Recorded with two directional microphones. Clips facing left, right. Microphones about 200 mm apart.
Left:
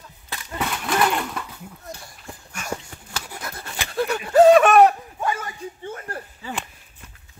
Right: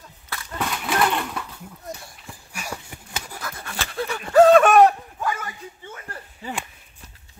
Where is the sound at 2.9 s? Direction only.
20° right (ahead or behind).